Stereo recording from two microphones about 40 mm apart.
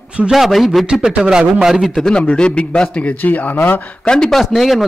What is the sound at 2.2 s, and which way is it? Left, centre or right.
Speech, left.